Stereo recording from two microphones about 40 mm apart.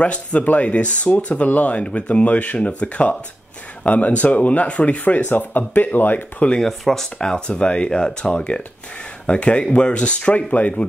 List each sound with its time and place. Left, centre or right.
0.0 s speech: left
6.6 s speech: centre
7.2 s speech: left